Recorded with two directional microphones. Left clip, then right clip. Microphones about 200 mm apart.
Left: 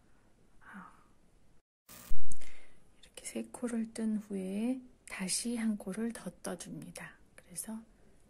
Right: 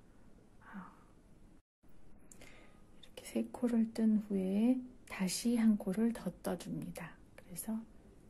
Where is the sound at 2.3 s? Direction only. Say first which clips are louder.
Left 1 dB; 10° left (ahead or behind).